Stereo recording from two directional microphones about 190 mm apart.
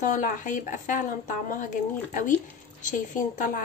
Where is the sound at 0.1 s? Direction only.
45° left (ahead or behind).